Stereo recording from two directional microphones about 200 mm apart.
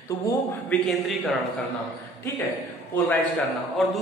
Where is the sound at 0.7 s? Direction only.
Centre (ahead or behind).